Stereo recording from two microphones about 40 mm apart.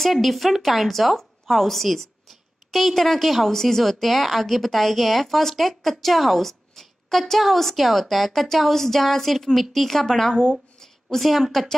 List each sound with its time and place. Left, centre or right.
0.0 s speech: centre
11.1 s speech: centre